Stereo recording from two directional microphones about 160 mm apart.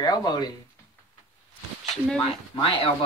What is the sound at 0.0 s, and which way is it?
Speech, 25° left (ahead or behind).